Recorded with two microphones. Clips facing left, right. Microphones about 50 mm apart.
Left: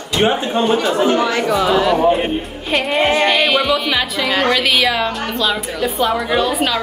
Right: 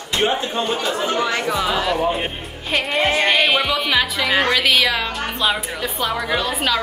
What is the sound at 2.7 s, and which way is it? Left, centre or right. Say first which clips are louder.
Music: left 3 dB; centre.